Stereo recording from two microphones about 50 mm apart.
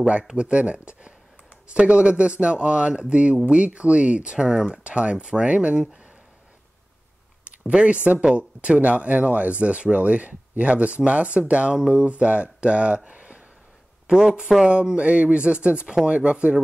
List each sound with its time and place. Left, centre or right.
0.4 s speech: right
4.8 s speech: right
7.4 s speech: right